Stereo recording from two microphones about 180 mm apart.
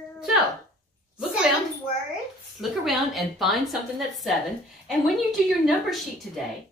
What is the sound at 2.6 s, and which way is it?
A woman's voice, centre (ahead or behind).